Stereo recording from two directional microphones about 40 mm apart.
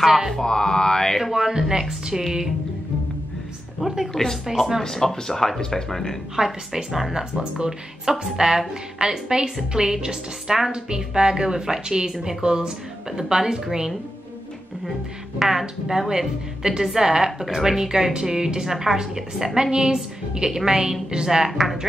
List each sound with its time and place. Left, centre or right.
0.0 s speech: centre
0.3 s mantra: centre
1.2 s a woman's voice: centre
3.8 s speech: centre
4.1 s mantra: centre
6.3 s a woman's voice: centre
15.3 s a woman's voice: centre
21.5 s speech: centre